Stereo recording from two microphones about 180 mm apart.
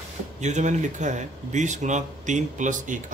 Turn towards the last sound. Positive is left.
turn(degrees=-45)  # may be behind; listen again after turning